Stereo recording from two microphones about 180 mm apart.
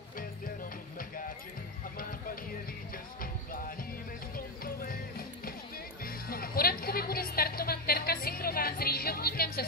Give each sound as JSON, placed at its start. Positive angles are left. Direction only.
{"t": 4.4, "sound": "music", "side_deg": 55}